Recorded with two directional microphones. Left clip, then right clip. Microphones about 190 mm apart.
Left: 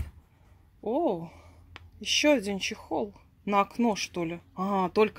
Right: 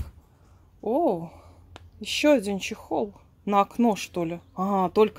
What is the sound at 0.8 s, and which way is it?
Speech, 5° right (ahead or behind).